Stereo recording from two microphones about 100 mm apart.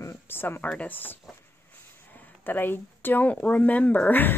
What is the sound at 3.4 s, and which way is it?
Speech, 15° left (ahead or behind).